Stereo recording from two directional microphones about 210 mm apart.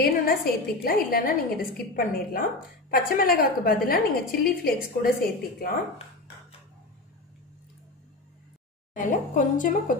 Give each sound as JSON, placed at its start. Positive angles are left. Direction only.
{"t": 0.0, "sound": "a woman's voice", "side_deg": 45}
{"t": 8.9, "sound": "a woman's voice", "side_deg": 40}